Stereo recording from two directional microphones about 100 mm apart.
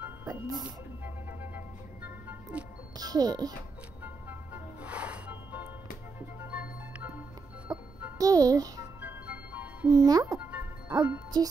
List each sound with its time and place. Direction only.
0.3 s speech: 40° right (ahead or behind)
0.7 s music: 15° right (ahead or behind)
3.0 s a child's voice: 40° right (ahead or behind)
4.8 s music: 10° right (ahead or behind)
7.7 s music: 35° right (ahead or behind)
9.0 s music: 15° right (ahead or behind)
9.8 s a child's voice: 40° right (ahead or behind)
10.3 s music: 15° right (ahead or behind)